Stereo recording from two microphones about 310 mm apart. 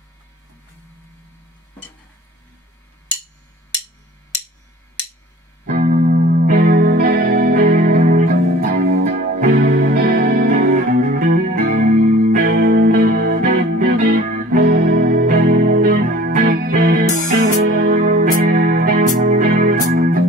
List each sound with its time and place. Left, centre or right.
5.7 s music: right